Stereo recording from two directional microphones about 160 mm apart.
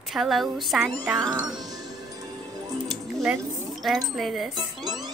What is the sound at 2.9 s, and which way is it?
Music, centre (ahead or behind).